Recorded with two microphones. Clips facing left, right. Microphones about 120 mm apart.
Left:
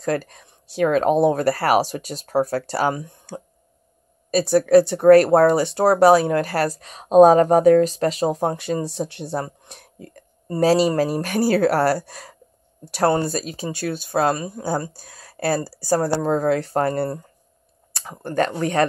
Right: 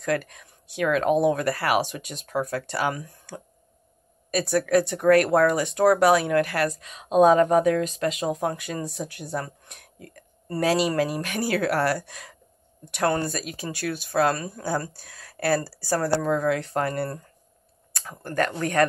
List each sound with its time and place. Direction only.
0.0 s speech: 35° left (ahead or behind)
18.2 s speech: 25° left (ahead or behind)